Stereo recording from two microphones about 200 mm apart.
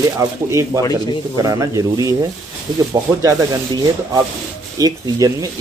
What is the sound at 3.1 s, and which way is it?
Speech, 15° right (ahead or behind).